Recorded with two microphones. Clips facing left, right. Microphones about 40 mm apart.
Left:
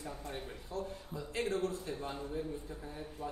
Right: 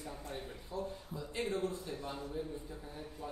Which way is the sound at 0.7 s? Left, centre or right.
Left.